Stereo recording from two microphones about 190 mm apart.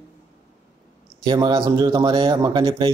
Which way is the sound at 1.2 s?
25° right (ahead or behind).